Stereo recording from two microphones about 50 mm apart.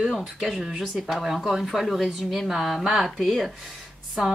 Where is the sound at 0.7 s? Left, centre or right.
Centre.